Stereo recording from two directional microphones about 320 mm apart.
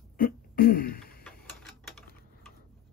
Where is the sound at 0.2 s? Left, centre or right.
Left.